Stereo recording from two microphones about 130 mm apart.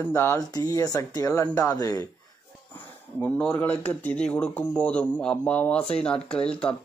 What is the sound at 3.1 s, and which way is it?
Speech, 10° left (ahead or behind).